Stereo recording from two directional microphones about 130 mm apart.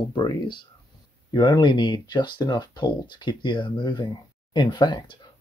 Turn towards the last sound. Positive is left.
turn(degrees=35)  # may be behind; listen again after turning